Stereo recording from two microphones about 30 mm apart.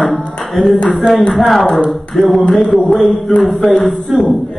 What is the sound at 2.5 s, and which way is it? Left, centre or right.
Speech, centre.